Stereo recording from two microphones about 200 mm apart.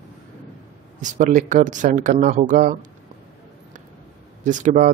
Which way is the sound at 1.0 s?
40° right (ahead or behind).